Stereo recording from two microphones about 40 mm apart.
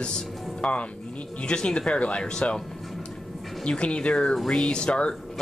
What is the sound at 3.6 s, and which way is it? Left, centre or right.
Speech, left.